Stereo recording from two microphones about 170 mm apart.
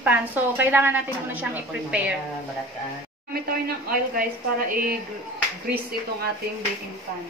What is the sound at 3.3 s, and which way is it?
Speech, 60° right (ahead or behind).